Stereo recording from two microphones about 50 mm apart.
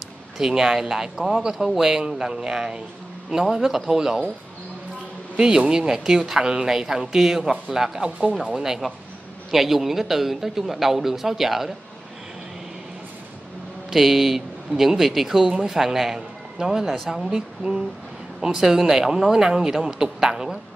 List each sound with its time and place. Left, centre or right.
0.4 s speech: centre
5.4 s a man's voice: centre
13.8 s speech: centre
16.8 s a man's voice: centre
17.1 s speech: centre